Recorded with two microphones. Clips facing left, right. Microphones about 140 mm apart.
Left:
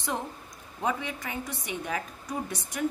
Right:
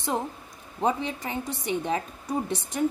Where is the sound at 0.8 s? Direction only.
25° right (ahead or behind).